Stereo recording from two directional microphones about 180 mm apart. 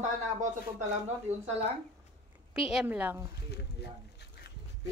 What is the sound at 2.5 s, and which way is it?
Speech, 5° right (ahead or behind).